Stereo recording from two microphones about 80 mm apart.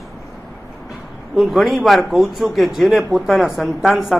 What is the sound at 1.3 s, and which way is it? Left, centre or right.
A man's voice, centre.